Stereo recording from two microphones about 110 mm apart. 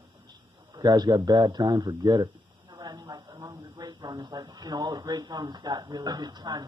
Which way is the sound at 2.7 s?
45° right (ahead or behind).